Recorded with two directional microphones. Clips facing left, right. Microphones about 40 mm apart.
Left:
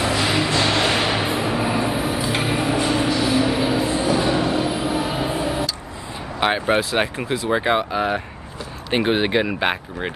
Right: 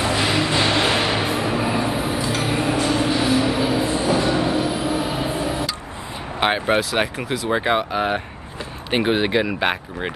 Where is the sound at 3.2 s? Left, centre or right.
Centre.